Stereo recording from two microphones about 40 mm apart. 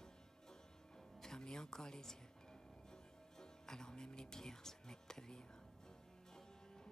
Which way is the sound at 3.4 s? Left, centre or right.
Centre.